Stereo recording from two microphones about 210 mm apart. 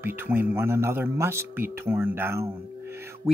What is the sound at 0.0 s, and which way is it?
Speech, 10° right (ahead or behind).